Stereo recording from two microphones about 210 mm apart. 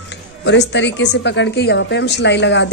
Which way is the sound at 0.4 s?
55° left (ahead or behind).